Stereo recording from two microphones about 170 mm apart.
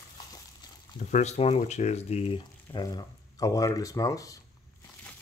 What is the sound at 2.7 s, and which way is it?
Speech, 25° left (ahead or behind).